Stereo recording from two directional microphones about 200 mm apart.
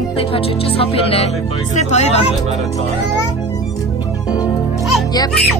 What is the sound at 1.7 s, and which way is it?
Speech, 35° left (ahead or behind).